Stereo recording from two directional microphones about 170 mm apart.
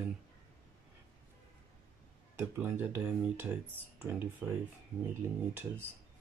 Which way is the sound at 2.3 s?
10° right (ahead or behind).